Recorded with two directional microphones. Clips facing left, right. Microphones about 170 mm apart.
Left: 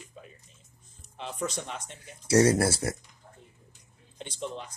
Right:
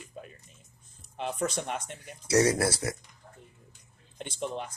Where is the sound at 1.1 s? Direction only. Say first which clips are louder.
Right 3 dB; 55° right (ahead or behind).